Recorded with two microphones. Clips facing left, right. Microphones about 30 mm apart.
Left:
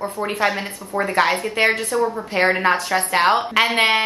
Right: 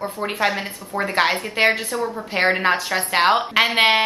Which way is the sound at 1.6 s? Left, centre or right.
Right.